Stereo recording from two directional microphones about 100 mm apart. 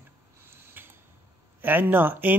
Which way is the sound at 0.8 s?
20° right (ahead or behind).